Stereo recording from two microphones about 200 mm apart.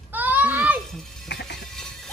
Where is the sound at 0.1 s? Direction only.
10° right (ahead or behind).